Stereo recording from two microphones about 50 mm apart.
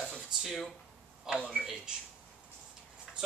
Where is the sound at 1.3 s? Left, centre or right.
Centre.